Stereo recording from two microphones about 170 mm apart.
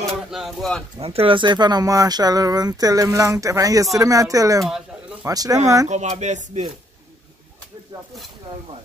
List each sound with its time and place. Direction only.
0.0 s a sound: centre (ahead or behind)
0.9 s speech: 35° right (ahead or behind)
5.9 s speech: 40° right (ahead or behind)